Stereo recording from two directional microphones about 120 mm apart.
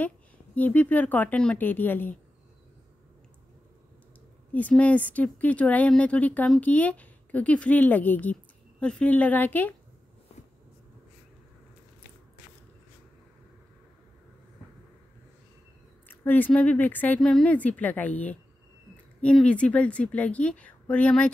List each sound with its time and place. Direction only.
0.6 s a woman's voice: 15° left (ahead or behind)
4.5 s a woman's voice: 15° left (ahead or behind)
16.1 s a woman's voice: 15° left (ahead or behind)